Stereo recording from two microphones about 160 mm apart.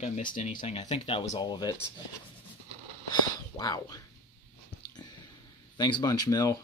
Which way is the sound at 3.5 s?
25° left (ahead or behind).